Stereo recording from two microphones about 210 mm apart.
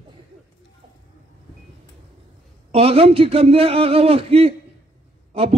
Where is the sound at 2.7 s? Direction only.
30° right (ahead or behind).